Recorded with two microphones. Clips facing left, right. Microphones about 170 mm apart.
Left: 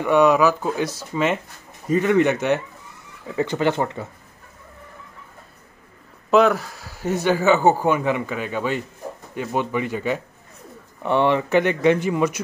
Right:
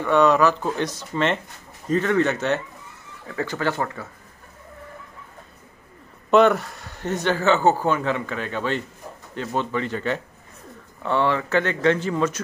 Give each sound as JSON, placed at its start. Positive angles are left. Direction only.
{"t": 0.0, "sound": "speech", "side_deg": 10}
{"t": 6.3, "sound": "speech", "side_deg": 0}